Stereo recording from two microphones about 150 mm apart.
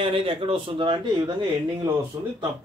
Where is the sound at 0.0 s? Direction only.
35° right (ahead or behind).